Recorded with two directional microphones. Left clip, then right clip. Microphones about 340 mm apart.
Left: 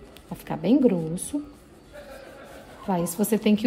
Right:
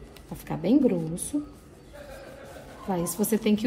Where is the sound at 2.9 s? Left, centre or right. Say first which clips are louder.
Left 2 dB; left.